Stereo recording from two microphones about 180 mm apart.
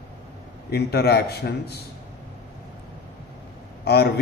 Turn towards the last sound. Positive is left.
turn(degrees=60)  # may be behind; listen again after turning